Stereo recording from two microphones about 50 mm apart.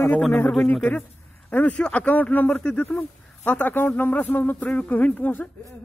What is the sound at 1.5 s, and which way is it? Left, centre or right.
Speech, left.